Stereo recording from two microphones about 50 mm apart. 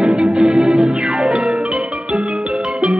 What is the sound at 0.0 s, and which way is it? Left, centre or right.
Music, centre.